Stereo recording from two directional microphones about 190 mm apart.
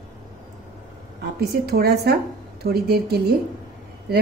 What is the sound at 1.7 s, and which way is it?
A woman's voice, 55° right (ahead or behind).